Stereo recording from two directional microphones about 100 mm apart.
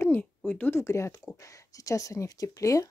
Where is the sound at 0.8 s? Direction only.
30° left (ahead or behind).